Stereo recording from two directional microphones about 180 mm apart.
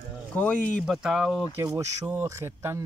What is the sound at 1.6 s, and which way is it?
Speech, 15° right (ahead or behind).